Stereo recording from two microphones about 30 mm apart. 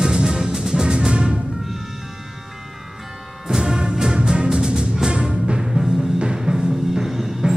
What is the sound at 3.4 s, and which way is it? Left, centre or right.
Music, right.